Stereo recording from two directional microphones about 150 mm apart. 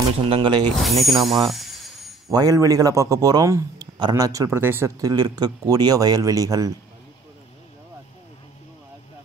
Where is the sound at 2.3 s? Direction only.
25° right (ahead or behind).